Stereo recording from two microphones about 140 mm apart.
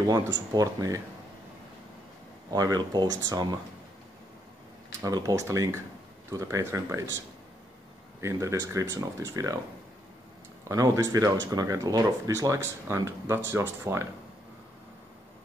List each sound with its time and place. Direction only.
0.0 s speech: 25° right (ahead or behind)
2.5 s speech: 25° right (ahead or behind)
5.0 s speech: 25° right (ahead or behind)
8.2 s speech: 20° right (ahead or behind)
10.6 s speech: 25° right (ahead or behind)